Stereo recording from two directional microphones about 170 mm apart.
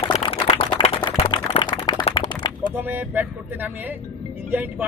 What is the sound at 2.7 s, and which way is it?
Speech, 10° right (ahead or behind).